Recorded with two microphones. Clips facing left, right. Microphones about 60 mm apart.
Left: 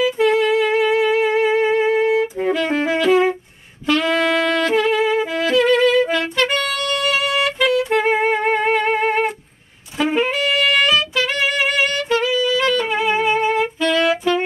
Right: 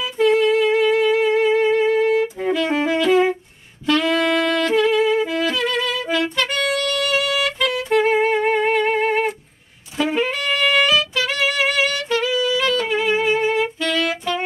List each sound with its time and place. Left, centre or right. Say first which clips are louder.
0.2 s humming: right 3 dB; left
1.1 s music: even; left
2.5 s saxophone: right 1 dB; left
2.9 s music: left 1 dB; left
5.4 s music: left 5 dB; left
5.7 s music: left 7 dB; left
7.6 s music: left 1 dB; centre
10.0 s saxophone: left 3 dB; centre
11.1 s music: left 1 dB; left
12.9 s music: left 1 dB; left